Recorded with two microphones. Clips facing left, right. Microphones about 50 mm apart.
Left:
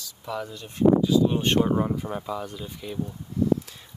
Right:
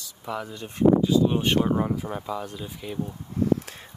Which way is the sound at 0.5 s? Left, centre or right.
Right.